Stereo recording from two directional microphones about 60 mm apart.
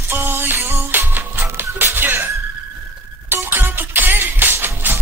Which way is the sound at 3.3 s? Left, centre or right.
Right.